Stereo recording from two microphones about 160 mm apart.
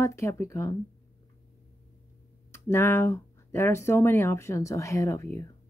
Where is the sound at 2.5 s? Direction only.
15° left (ahead or behind).